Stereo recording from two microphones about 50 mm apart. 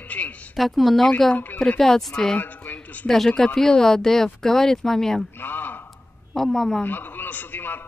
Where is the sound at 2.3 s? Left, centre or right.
Left.